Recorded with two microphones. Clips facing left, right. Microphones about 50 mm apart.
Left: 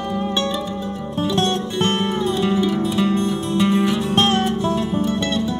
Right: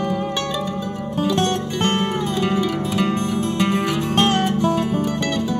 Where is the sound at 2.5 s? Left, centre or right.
Right.